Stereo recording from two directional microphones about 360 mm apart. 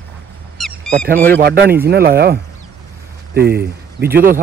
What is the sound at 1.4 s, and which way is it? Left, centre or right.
Speech, right.